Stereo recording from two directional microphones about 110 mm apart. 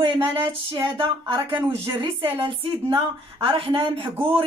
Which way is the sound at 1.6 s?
20° right (ahead or behind).